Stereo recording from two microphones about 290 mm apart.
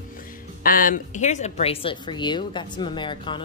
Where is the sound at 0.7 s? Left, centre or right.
Left.